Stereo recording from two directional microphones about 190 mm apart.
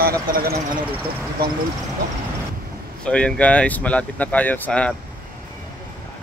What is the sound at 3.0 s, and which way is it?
Speech, 5° left (ahead or behind).